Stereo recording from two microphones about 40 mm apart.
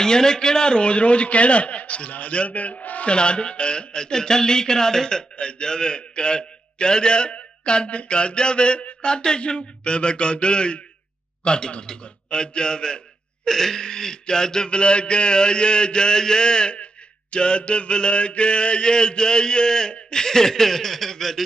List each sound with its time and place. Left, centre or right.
0.0 s a man's voice: centre; by 3.1 s left
3.1 s speech: left; by 21.4 s centre